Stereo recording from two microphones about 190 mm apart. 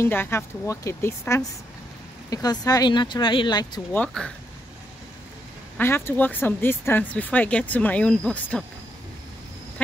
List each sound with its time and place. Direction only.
0.0 s speech: 10° left (ahead or behind)
3.9 s speech: 5° left (ahead or behind)
5.8 s speech: 10° left (ahead or behind)